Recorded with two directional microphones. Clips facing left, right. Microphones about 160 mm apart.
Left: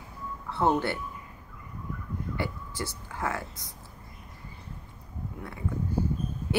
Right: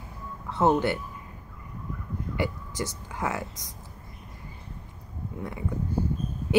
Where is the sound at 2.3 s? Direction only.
15° right (ahead or behind).